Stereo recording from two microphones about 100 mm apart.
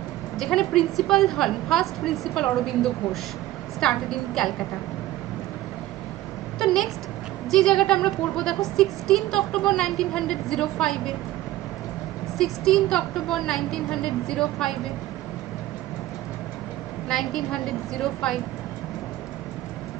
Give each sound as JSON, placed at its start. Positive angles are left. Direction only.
{"t": 0.4, "sound": "speech", "side_deg": 5}
{"t": 6.6, "sound": "speech", "side_deg": 5}
{"t": 12.4, "sound": "speech", "side_deg": 5}
{"t": 17.1, "sound": "speech", "side_deg": 5}